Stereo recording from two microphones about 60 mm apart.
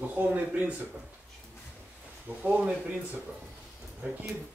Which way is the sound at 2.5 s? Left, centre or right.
Centre.